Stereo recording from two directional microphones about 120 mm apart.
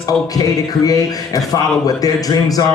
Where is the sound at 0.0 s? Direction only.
30° left (ahead or behind).